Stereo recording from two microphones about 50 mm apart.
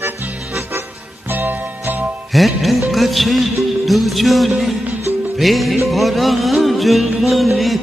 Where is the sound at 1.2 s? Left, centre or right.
Right.